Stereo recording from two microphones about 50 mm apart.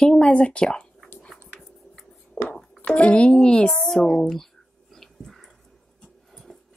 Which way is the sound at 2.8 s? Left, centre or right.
Left.